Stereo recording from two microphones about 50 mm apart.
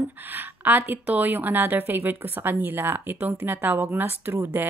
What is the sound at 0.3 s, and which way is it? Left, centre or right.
A woman's voice, right.